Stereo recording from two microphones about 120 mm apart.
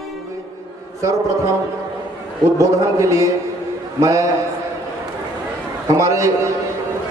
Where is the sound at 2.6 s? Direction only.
25° right (ahead or behind).